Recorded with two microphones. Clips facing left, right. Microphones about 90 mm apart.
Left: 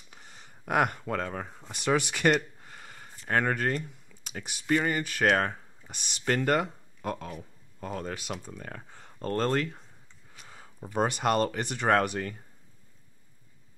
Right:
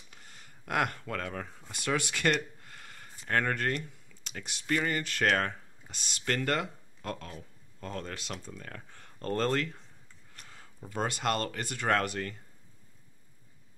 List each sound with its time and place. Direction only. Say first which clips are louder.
0.7 s speech: left 4 dB; 15° left (ahead or behind)
5.8 s a sound: left 3 dB; 15° right (ahead or behind)
6.2 s speech: left 5 dB; 15° left (ahead or behind)
9.2 s speech: left 2 dB; 5° left (ahead or behind)
10.5 s speech: left 6 dB; 15° left (ahead or behind)